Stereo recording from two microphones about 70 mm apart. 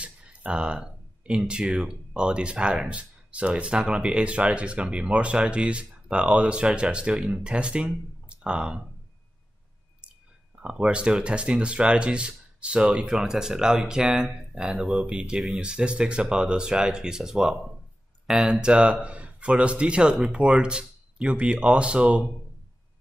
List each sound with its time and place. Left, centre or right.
0.0 s a sound: centre
1.5 s speech: centre
10.6 s speech: centre